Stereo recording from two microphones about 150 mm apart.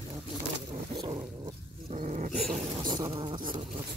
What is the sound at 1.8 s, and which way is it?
Dog, 50° right (ahead or behind).